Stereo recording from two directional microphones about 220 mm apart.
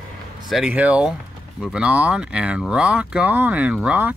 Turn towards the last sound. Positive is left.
turn(degrees=-5)  # may be behind; listen again after turning